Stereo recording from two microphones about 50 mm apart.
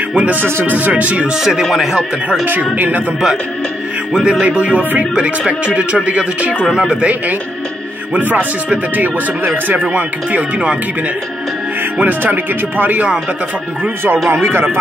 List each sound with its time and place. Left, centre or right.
0.1 s music: right
1.4 s speech: centre
2.7 s speech: right
4.1 s music: centre
6.7 s speech: centre
7.0 s music: right
8.1 s speech: right
12.0 s speech: right
14.4 s speech: right